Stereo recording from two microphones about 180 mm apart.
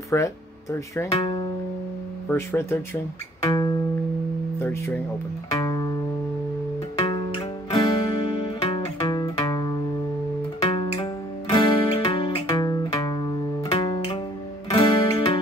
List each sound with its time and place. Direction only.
0.1 s speech: 15° left (ahead or behind)
1.1 s music: 30° left (ahead or behind)
2.2 s speech: 15° left (ahead or behind)
3.4 s music: 25° left (ahead or behind)
4.6 s speech: 15° left (ahead or behind)
5.5 s music: 20° left (ahead or behind)
7.0 s music: 25° left (ahead or behind)
10.6 s music: 35° left (ahead or behind)